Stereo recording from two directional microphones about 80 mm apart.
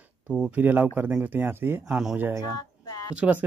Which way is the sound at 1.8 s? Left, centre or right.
Centre.